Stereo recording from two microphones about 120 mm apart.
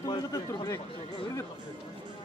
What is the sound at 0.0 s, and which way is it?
Speech, 30° left (ahead or behind).